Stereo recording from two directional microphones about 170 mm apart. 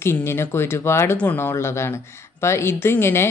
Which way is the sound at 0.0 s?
15° left (ahead or behind).